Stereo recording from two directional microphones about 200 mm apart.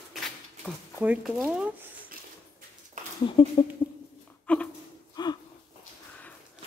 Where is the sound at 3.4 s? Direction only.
25° left (ahead or behind).